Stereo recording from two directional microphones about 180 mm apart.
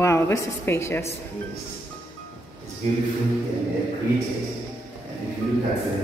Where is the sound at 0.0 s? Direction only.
15° left (ahead or behind).